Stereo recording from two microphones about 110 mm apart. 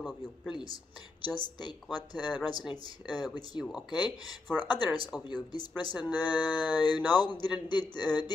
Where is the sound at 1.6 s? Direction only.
40° left (ahead or behind).